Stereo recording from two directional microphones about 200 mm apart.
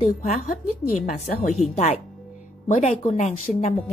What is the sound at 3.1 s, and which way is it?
Speech, 35° left (ahead or behind).